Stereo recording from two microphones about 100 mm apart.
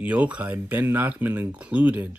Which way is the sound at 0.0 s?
15° right (ahead or behind).